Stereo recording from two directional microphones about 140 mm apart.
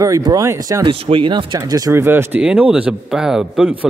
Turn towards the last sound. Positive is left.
turn(degrees=-5)  # may be behind; listen again after turning